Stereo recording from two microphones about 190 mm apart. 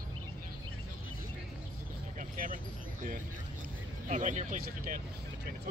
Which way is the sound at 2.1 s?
45° right (ahead or behind).